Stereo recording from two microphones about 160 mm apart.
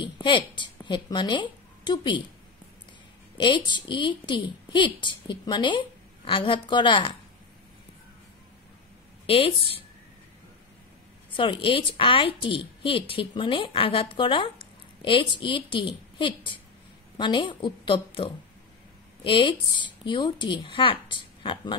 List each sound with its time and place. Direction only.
0.0 s speech: 30° left (ahead or behind)
3.3 s a woman's voice: 30° left (ahead or behind)
9.2 s a woman's voice: 35° left (ahead or behind)
11.3 s a woman's voice: 30° left (ahead or behind)